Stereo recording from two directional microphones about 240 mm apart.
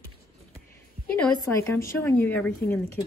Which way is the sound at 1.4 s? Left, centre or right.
Centre.